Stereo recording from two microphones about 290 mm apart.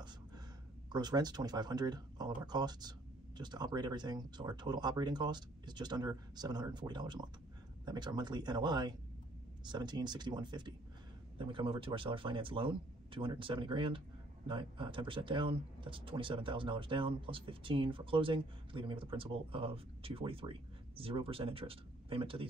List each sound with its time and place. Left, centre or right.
0.8 s speech: centre